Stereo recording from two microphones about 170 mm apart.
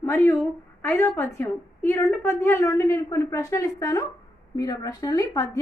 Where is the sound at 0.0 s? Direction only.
15° left (ahead or behind).